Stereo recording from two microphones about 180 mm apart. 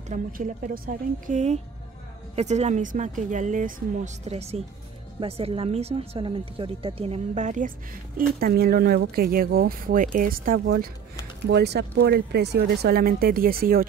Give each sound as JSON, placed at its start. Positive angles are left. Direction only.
{"t": 0.1, "sound": "a woman's voice", "side_deg": -45}
{"t": 8.4, "sound": "speech", "side_deg": -55}
{"t": 11.4, "sound": "speech", "side_deg": -65}